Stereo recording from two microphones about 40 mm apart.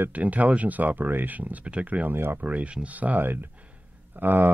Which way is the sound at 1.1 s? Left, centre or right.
Right.